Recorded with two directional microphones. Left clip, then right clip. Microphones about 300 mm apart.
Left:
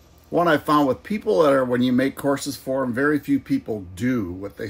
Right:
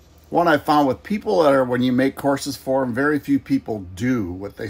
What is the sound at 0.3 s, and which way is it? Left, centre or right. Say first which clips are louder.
Speech: right 2 dB; centre.